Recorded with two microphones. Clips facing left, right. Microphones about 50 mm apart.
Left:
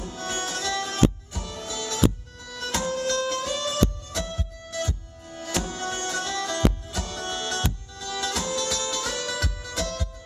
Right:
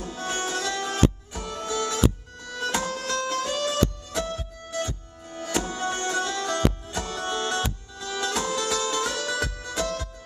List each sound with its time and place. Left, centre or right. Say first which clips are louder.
0.0 s music: right 1 dB; centre